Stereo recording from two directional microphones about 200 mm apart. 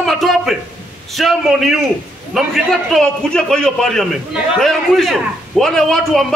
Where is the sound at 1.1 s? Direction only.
Centre (ahead or behind).